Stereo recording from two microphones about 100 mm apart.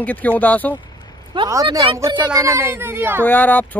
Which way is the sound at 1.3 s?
55° right (ahead or behind).